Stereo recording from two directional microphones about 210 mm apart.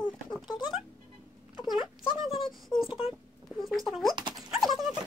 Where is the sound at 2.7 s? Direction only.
20° left (ahead or behind).